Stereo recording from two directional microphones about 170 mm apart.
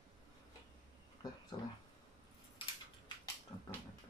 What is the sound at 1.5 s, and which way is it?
Speech, 25° left (ahead or behind).